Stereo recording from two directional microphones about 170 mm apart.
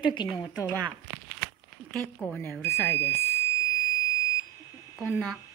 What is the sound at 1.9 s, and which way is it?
Speech, 10° left (ahead or behind).